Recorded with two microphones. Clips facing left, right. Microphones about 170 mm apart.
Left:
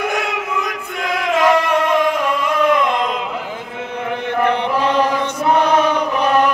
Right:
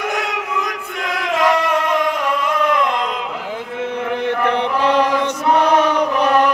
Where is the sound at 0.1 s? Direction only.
5° left (ahead or behind).